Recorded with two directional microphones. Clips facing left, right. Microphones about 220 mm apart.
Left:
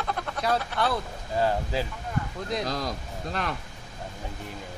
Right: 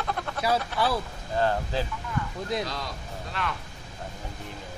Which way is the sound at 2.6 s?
45° left (ahead or behind).